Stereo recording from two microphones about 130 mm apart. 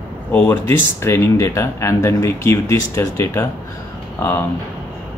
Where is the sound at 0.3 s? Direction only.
15° left (ahead or behind).